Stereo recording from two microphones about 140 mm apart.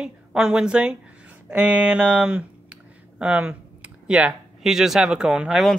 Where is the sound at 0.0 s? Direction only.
5° right (ahead or behind).